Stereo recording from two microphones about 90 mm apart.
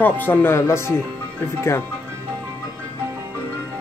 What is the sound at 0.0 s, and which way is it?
Speech, 20° left (ahead or behind).